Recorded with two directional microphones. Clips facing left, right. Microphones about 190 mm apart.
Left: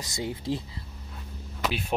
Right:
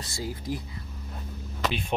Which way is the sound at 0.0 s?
20° left (ahead or behind).